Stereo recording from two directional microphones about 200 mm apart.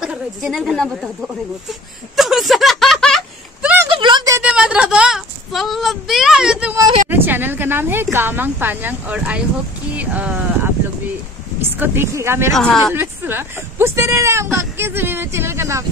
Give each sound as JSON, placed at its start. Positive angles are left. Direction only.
{"t": 0.0, "sound": "a woman's voice", "side_deg": 0}
{"t": 3.6, "sound": "a sound", "side_deg": -10}
{"t": 3.9, "sound": "a sound", "side_deg": -25}
{"t": 4.4, "sound": "speech", "side_deg": -5}
{"t": 11.7, "sound": "speech", "side_deg": -10}
{"t": 12.5, "sound": "speech", "side_deg": 0}
{"t": 12.9, "sound": "speech", "side_deg": -10}